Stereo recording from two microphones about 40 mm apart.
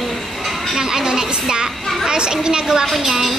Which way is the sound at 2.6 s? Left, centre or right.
Centre.